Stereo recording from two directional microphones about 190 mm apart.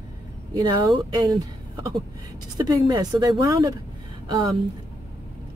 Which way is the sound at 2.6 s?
20° right (ahead or behind).